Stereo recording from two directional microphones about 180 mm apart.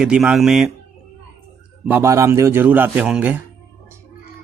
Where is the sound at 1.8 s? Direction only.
10° right (ahead or behind).